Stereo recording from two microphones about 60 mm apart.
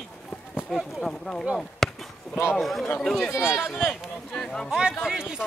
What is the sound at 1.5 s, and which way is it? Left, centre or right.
Chop, centre.